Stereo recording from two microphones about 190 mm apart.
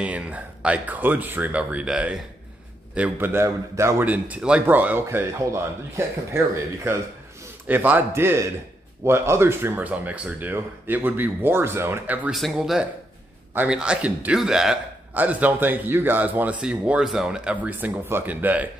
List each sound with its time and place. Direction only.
0.0 s a man's voice: 5° right (ahead or behind)